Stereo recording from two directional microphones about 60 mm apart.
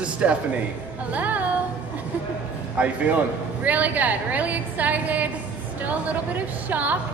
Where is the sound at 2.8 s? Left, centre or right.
Right.